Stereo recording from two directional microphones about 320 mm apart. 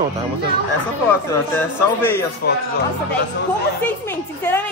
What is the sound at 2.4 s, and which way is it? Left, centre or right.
Speech, left.